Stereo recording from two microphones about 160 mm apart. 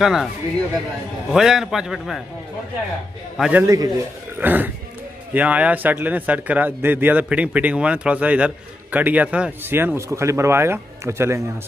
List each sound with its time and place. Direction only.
0.0 s a man's voice: centre (ahead or behind)
1.3 s a man's voice: 5° right (ahead or behind)
3.3 s a man's voice: 5° right (ahead or behind)
3.6 s a man's voice: 20° right (ahead or behind)